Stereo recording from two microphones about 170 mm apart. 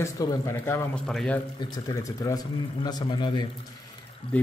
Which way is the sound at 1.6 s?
20° left (ahead or behind).